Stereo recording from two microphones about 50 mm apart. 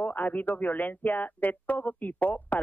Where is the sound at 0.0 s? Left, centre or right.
Left.